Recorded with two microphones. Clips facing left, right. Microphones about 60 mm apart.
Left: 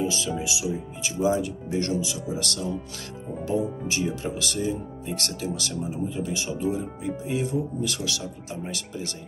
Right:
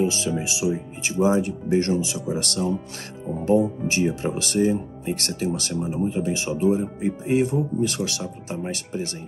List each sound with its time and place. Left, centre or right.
0.0 s speech: right